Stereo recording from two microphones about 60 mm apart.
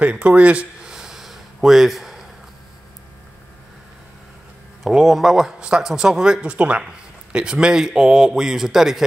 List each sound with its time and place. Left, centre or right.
0.0 s speech: right
0.9 s a sound: centre
4.8 s speech: centre